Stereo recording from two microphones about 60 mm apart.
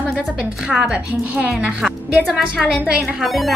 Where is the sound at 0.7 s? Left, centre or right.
Centre.